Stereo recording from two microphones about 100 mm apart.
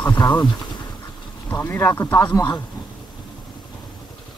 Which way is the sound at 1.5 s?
20° left (ahead or behind).